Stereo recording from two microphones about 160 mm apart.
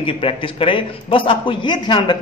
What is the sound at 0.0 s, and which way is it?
A man's voice, 35° left (ahead or behind).